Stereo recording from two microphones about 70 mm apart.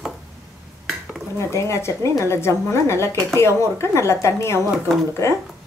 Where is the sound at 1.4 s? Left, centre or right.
Left.